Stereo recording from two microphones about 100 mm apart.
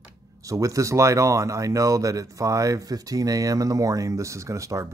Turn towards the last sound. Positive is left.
turn(degrees=-30)  # may be behind; listen again after turning